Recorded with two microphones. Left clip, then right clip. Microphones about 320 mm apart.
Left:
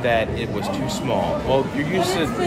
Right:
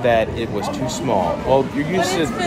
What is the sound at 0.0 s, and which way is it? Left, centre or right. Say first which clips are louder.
Speech: right 3 dB; centre.